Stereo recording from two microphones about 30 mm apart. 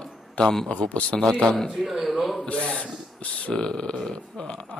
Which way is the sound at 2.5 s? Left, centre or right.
Left.